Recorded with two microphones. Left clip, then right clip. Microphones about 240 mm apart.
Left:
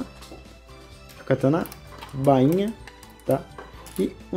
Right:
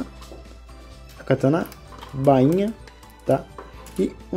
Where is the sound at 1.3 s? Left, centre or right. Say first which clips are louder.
Right 2 dB; centre.